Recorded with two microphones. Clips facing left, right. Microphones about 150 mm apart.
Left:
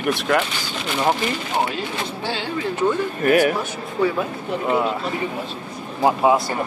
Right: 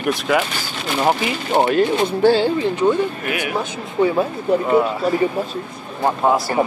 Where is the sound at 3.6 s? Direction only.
20° right (ahead or behind).